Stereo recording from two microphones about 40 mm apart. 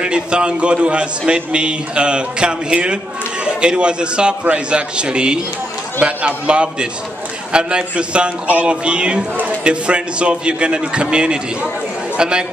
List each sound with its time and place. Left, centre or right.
0.0 s a man's voice: right